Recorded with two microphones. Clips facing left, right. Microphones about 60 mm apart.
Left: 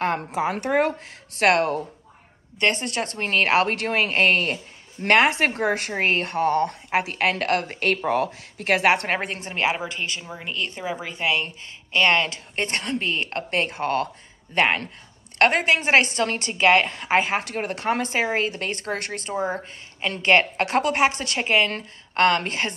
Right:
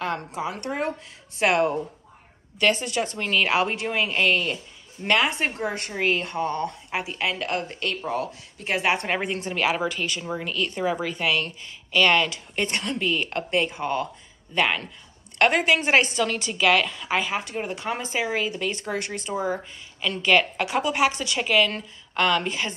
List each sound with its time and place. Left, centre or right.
0.5 s speech: left
1.5 s a woman's voice: left
3.5 s a woman's voice: left
5.0 s a woman's voice: left
5.9 s a woman's voice: left
8.6 s a woman's voice: left
9.1 s speech: left
12.3 s a woman's voice: left
13.5 s a woman's voice: left
14.5 s a woman's voice: left
21.4 s a woman's voice: left